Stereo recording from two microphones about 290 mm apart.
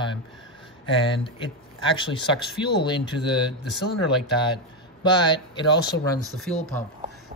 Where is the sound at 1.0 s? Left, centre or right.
Centre.